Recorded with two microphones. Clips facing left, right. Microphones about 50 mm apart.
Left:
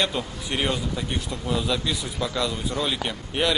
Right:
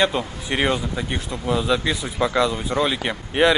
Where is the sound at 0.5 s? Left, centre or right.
Right.